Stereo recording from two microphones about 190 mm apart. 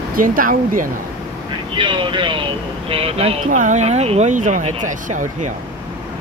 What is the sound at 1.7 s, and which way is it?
Speech, 25° right (ahead or behind).